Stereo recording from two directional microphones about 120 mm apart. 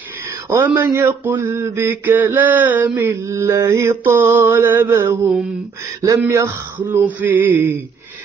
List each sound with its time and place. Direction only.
0.5 s mantra: 20° right (ahead or behind)